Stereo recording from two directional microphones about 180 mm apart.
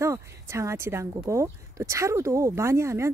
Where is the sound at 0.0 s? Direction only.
15° right (ahead or behind).